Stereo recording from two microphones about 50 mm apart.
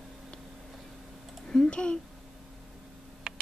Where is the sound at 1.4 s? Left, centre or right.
Centre.